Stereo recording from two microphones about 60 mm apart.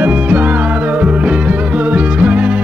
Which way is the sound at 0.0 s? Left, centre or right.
Right.